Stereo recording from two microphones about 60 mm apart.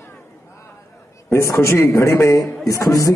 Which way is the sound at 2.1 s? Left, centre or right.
Left.